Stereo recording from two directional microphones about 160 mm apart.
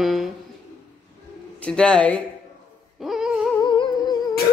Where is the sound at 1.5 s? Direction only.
5° left (ahead or behind).